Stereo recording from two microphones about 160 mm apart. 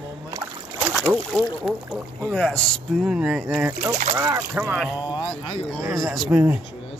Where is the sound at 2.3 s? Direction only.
5° left (ahead or behind).